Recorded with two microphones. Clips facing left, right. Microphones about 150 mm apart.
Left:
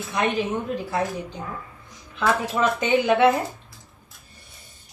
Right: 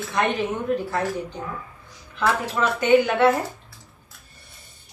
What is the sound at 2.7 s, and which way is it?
Speech, 20° left (ahead or behind).